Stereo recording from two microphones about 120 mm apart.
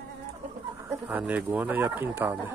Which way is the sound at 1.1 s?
15° right (ahead or behind).